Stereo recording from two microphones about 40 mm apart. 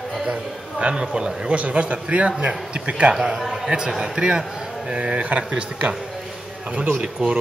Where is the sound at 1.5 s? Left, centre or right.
Right.